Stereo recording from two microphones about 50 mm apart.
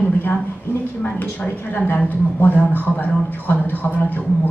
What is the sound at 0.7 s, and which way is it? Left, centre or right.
Speech, left.